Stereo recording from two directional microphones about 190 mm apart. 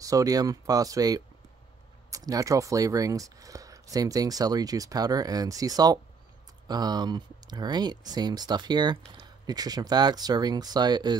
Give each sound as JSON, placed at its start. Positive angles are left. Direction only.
{"t": 0.0, "sound": "speech", "side_deg": -20}